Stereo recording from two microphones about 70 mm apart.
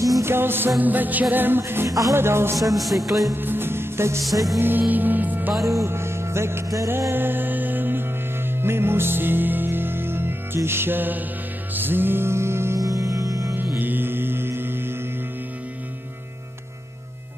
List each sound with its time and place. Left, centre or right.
0.2 s music: right
1.6 s speech: right
1.9 s music: right
2.1 s speech: right
2.7 s music: centre
3.3 s music: right
5.7 s music: right
6.9 s music: right
12.7 s music: right
13.6 s music: right